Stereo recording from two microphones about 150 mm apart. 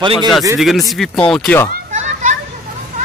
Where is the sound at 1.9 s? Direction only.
55° right (ahead or behind).